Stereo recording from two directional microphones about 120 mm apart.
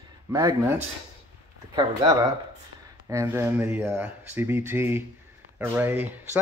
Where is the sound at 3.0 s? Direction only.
20° right (ahead or behind).